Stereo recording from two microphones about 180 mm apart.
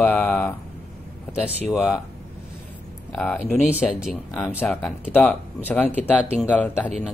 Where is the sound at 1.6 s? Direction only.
5° right (ahead or behind).